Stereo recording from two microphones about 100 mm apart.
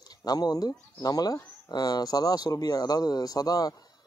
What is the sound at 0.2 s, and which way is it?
Speech, 40° left (ahead or behind).